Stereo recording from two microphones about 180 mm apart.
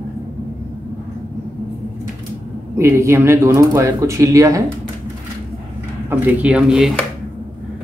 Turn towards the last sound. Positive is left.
turn(degrees=-5)  # may be behind; listen again after turning